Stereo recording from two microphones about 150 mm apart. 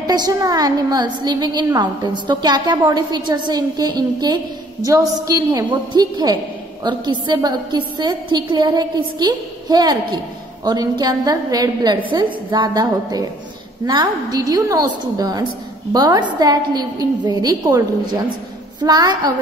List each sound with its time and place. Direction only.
0.0 s a woman's voice: 25° right (ahead or behind)